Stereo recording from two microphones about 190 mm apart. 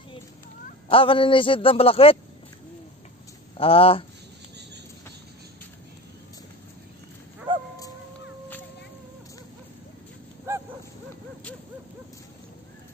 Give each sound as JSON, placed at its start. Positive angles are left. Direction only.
{"t": 0.8, "sound": "a man's voice", "side_deg": 30}
{"t": 3.5, "sound": "a man's voice", "side_deg": 30}
{"t": 7.5, "sound": "bow-wow", "side_deg": -25}
{"t": 10.5, "sound": "dog", "side_deg": -15}